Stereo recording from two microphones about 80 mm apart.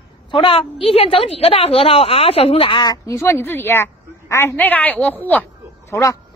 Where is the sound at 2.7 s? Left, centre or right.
Left.